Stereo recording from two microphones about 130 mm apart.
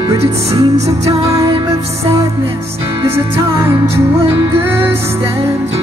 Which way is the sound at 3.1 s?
20° right (ahead or behind).